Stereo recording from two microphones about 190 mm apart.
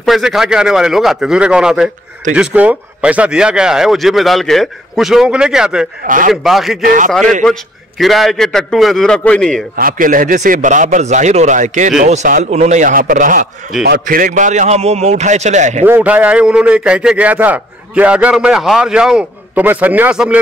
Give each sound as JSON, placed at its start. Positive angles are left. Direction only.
{"t": 0.0, "sound": "speech", "side_deg": 0}
{"t": 6.0, "sound": "a man's voice", "side_deg": -45}
{"t": 6.3, "sound": "speech", "side_deg": 0}
{"t": 9.8, "sound": "speech", "side_deg": -45}
{"t": 15.8, "sound": "a man's voice", "side_deg": -10}